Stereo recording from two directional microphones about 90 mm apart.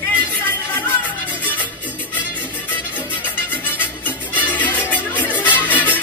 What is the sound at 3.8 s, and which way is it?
Music, 20° left (ahead or behind).